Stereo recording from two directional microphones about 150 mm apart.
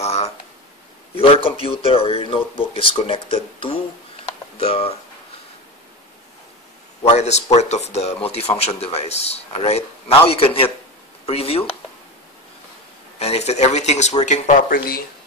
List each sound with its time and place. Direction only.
0.0 s speech: 45° left (ahead or behind)
7.0 s speech: 45° left (ahead or behind)
13.2 s speech: 45° left (ahead or behind)
14.7 s speech: 75° left (ahead or behind)